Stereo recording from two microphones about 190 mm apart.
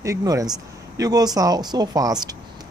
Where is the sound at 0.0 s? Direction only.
15° right (ahead or behind).